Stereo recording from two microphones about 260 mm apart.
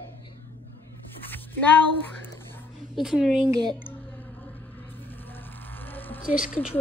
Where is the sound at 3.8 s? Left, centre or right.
Centre.